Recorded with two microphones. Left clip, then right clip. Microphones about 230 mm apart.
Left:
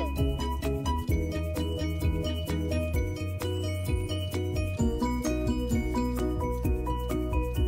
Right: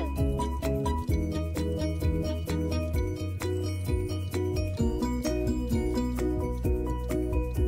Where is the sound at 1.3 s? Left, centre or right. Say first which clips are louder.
Right 1 dB; centre.